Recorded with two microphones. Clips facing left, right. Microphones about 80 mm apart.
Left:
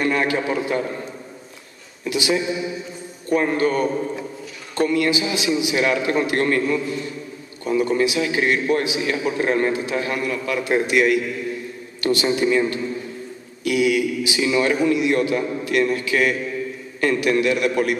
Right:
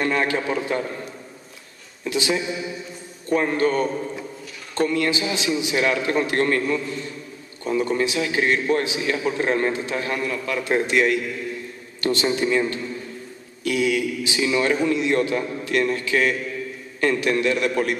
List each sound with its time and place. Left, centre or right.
0.0 s a man's voice: centre
2.0 s a man's voice: centre
13.7 s a man's voice: centre